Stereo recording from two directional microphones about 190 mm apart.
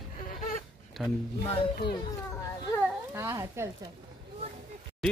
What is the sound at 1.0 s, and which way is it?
Speech, 5° right (ahead or behind).